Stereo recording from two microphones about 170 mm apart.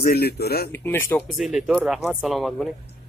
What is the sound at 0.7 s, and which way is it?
Speech, 10° left (ahead or behind).